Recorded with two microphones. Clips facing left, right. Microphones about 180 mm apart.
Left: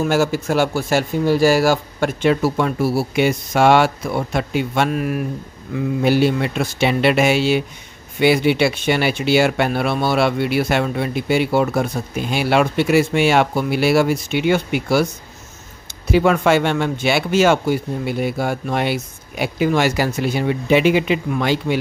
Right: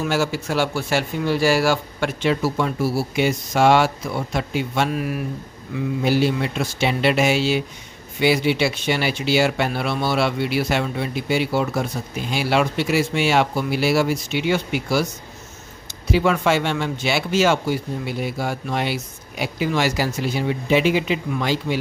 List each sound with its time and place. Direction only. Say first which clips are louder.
0.0 s speech: left 4 dB; 45° left (ahead or behind)
6.0 s speech: left 3 dB; 60° left (ahead or behind)
16.1 s speech: left 4 dB; 55° left (ahead or behind)